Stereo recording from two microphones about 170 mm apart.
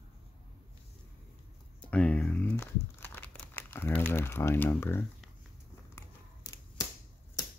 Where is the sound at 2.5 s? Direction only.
15° left (ahead or behind).